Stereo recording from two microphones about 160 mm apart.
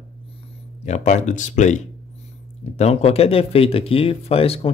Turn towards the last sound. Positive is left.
turn(degrees=35)  # may be behind; listen again after turning